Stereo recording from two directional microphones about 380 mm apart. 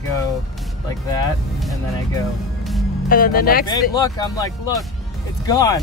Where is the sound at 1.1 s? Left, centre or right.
Centre.